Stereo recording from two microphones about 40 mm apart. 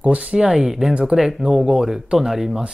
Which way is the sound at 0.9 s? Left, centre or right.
Right.